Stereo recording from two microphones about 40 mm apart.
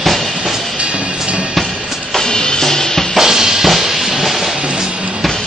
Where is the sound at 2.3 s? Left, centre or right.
Centre.